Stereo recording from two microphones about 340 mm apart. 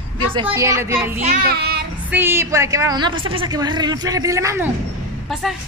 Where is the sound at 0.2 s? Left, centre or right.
Centre.